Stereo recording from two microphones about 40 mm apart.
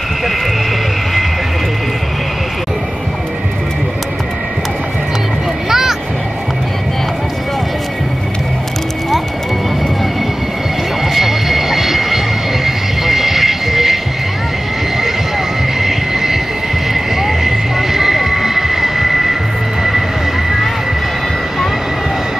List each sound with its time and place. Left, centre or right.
5.7 s music: centre
11.1 s vehicle: centre
15.8 s vehicle: centre
20.4 s vehicle: centre